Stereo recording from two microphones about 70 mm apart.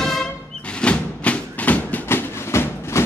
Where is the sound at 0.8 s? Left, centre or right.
Centre.